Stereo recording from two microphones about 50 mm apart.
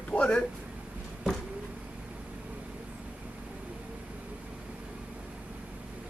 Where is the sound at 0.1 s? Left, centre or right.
Left.